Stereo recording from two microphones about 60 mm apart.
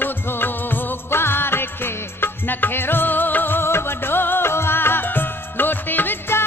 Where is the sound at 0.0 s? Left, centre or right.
Left.